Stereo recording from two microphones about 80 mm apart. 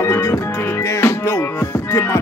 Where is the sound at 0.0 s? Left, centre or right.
Left.